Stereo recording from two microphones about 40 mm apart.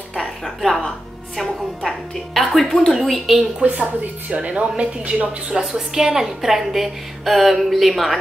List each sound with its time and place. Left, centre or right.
0.2 s a sound: centre
0.8 s a woman's voice: centre
3.6 s a woman's voice: right
5.7 s a woman's voice: centre